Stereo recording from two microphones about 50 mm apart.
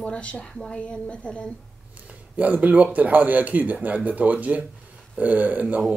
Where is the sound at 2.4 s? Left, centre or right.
Right.